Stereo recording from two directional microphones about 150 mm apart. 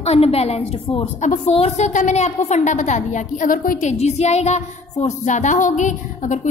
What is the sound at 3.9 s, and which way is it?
Speech, 45° left (ahead or behind).